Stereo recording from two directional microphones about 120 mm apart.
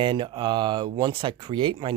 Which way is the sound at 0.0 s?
45° right (ahead or behind).